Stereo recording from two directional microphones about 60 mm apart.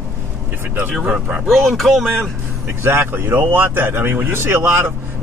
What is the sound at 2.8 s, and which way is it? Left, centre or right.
A man's voice, right.